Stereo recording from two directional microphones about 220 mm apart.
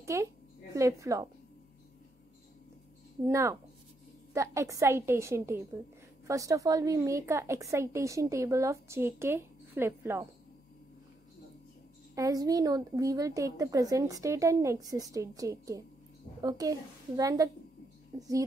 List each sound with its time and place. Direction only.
0.0 s a woman's voice: 15° right (ahead or behind)
3.3 s a woman's voice: 15° right (ahead or behind)
12.2 s a woman's voice: 15° right (ahead or behind)